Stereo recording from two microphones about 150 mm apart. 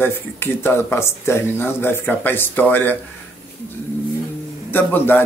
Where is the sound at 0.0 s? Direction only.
15° left (ahead or behind).